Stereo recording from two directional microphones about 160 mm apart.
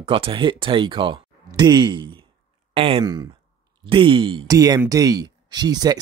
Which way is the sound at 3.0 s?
25° right (ahead or behind).